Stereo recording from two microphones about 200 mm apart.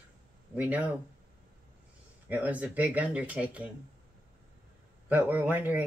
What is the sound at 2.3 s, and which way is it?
Speech, 5° right (ahead or behind).